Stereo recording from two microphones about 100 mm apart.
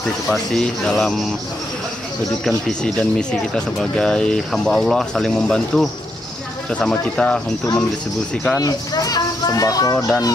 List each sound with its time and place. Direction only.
0.3 s speech: 5° left (ahead or behind)
2.4 s speech: 10° left (ahead or behind)
8.5 s speech: 35° left (ahead or behind)
9.9 s speech: centre (ahead or behind)